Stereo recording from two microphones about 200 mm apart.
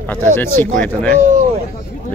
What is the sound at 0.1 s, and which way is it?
Speech, 10° left (ahead or behind).